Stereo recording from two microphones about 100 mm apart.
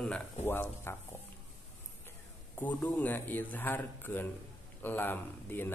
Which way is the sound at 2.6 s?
15° left (ahead or behind).